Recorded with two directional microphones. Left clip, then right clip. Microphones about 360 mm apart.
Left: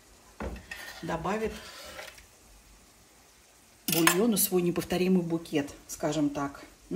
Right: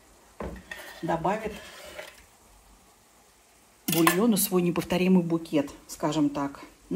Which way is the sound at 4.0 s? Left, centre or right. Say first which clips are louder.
Right 2 dB; centre.